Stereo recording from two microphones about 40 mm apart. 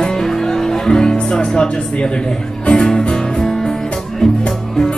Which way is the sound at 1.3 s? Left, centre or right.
Left.